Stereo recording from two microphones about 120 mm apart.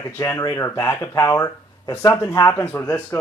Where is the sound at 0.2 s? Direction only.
25° left (ahead or behind).